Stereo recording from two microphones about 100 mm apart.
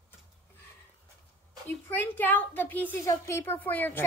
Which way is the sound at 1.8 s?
15° left (ahead or behind).